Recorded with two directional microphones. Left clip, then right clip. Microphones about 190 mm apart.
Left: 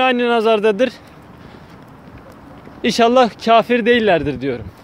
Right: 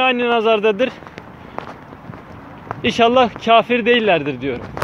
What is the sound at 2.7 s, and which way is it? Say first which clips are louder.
Speech: left 1 dB; 40° left (ahead or behind).